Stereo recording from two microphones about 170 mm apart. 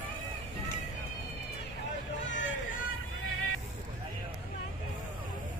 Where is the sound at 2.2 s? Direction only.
90° left.